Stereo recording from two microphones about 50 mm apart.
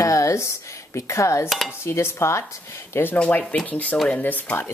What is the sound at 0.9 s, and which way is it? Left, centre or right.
Speech, left.